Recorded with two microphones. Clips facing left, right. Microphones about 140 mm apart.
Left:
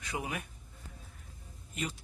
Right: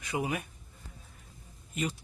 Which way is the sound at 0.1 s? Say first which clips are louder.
Right 5 dB; 5° right (ahead or behind).